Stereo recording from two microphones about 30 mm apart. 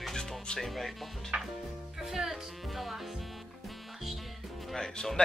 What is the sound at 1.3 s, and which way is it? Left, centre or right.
Music, right.